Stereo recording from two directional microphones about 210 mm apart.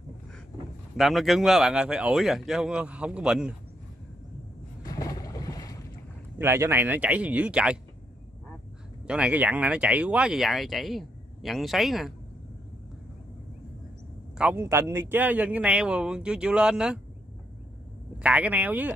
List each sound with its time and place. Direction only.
0.9 s speech: centre (ahead or behind)
4.8 s boat: 15° left (ahead or behind)
6.3 s speech: 10° right (ahead or behind)
9.0 s speech: 5° right (ahead or behind)
14.4 s speech: 10° right (ahead or behind)
18.2 s speech: 5° right (ahead or behind)